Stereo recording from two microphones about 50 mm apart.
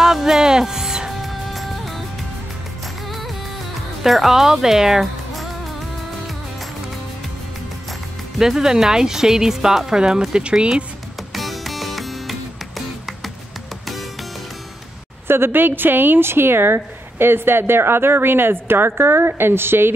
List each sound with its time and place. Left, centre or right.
0.0 s music: centre
1.2 s music: centre
4.0 s speech: centre
5.0 s music: centre
8.4 s speech: centre
11.3 s music: centre
15.2 s a woman's voice: right